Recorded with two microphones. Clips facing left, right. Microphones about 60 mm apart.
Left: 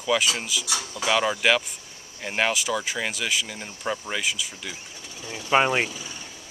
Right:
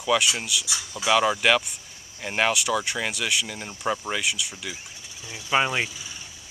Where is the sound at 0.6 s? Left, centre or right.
Left.